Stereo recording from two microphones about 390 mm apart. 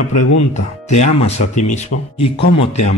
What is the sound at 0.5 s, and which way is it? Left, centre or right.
Speech, centre.